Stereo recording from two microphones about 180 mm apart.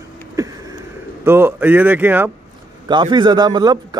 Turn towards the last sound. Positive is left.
turn(degrees=-20)  # may be behind; listen again after turning